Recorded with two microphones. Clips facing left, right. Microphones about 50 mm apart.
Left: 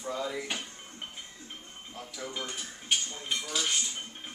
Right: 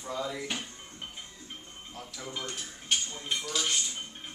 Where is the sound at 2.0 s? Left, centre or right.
Centre.